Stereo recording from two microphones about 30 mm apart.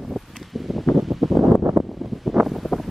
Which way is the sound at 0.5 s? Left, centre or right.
Centre.